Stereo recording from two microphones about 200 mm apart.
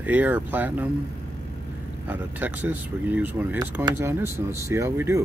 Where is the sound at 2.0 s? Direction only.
10° right (ahead or behind).